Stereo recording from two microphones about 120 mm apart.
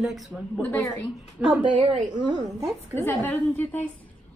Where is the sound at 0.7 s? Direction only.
25° left (ahead or behind).